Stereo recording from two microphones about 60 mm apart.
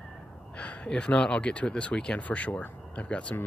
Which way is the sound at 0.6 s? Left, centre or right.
Centre.